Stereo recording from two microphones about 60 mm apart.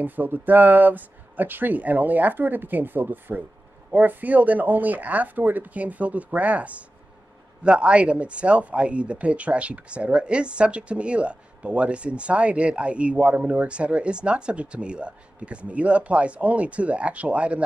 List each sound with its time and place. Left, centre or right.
0.0 s speech: right